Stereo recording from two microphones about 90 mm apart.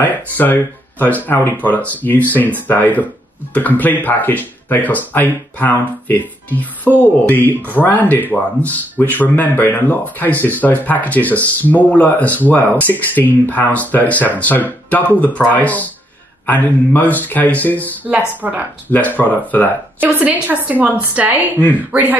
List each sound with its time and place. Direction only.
0.0 s speech: 20° left (ahead or behind)
18.4 s a woman's voice: 20° right (ahead or behind)
18.9 s speech: 20° left (ahead or behind)
20.0 s a woman's voice: 20° right (ahead or behind)